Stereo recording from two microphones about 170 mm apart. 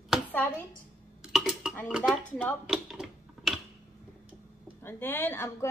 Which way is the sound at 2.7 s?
Centre (ahead or behind).